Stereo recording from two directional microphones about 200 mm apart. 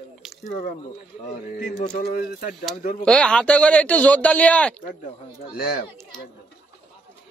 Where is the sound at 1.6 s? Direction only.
40° left (ahead or behind).